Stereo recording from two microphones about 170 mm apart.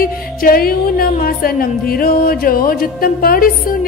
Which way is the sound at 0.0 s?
60° left (ahead or behind).